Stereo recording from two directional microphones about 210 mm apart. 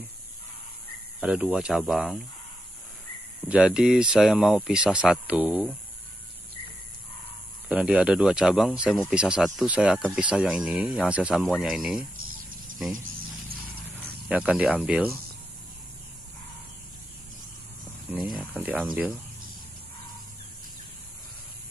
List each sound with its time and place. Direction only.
1.2 s speech: 5° right (ahead or behind)
3.4 s speech: 5° right (ahead or behind)
7.6 s speech: 5° right (ahead or behind)
14.0 s speech: 5° right (ahead or behind)
18.1 s speech: 5° right (ahead or behind)